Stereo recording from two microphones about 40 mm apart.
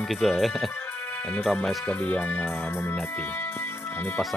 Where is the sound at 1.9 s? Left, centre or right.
Left.